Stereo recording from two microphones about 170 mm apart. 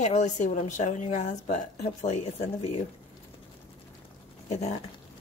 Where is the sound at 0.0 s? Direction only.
45° left (ahead or behind).